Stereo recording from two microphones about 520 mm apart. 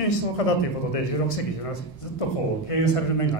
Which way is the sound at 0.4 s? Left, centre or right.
Left.